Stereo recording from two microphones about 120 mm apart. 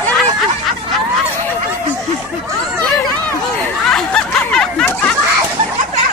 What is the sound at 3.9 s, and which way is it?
Snicker, 5° left (ahead or behind).